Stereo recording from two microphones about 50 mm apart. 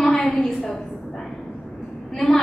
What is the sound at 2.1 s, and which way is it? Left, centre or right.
Speech, centre.